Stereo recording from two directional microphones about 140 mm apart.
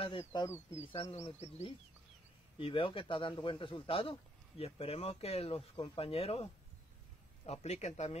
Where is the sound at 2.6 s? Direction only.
40° left (ahead or behind).